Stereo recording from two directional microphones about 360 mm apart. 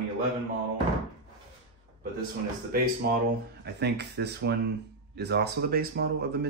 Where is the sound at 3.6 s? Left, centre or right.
Right.